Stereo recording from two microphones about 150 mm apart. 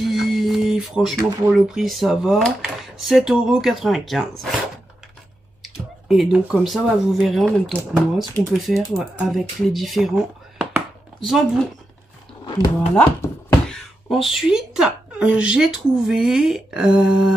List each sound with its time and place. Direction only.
0.0 s speech: centre (ahead or behind)
5.6 s speech: centre (ahead or behind)
12.9 s chopping: 15° left (ahead or behind)
13.7 s speech: centre (ahead or behind)